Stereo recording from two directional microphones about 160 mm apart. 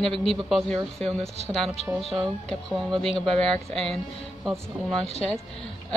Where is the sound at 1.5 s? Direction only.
Centre (ahead or behind).